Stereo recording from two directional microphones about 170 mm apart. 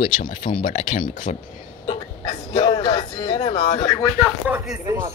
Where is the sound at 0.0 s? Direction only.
55° left (ahead or behind).